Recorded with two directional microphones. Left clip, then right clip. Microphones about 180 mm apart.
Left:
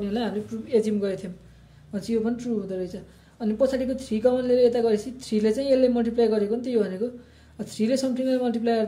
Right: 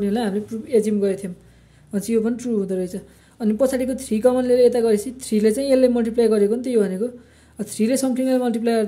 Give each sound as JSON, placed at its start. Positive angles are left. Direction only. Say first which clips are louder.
{"t": 0.0, "sound": "a woman's voice", "louder": "right 5 dB", "side_deg": -40}
{"t": 1.9, "sound": "a woman's voice", "louder": "right 5 dB", "side_deg": -40}